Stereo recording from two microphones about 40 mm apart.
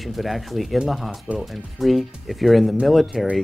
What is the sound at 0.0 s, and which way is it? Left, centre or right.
Speech, centre.